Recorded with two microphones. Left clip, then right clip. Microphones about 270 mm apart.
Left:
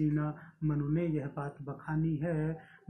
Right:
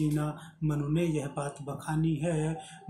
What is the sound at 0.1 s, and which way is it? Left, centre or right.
Speech, centre.